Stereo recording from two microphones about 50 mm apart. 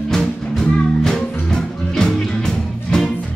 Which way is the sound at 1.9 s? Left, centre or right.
Centre.